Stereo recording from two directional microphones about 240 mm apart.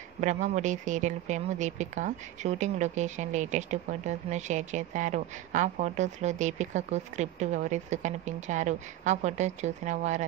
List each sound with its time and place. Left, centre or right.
0.2 s speech: right